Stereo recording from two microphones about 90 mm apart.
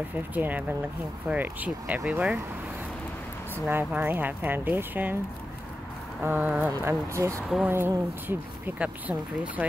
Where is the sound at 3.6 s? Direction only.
25° right (ahead or behind).